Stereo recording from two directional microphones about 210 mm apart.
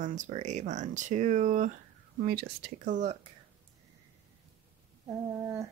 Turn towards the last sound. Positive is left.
turn(degrees=-15)  # may be behind; listen again after turning